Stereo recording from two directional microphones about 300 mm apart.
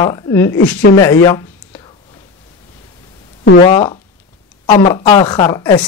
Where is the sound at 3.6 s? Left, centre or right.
Centre.